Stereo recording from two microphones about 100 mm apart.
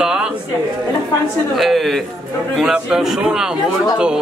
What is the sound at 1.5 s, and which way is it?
A man's voice, centre (ahead or behind).